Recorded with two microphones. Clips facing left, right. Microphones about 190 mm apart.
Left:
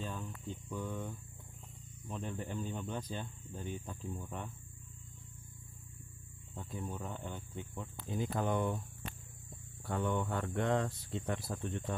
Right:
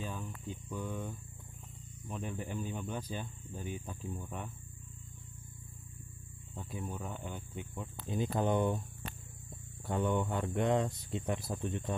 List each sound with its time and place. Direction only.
0.0 s cricket: 10° right (ahead or behind)
2.0 s speech: 10° right (ahead or behind)
6.5 s speech: 10° right (ahead or behind)
9.8 s speech: 20° right (ahead or behind)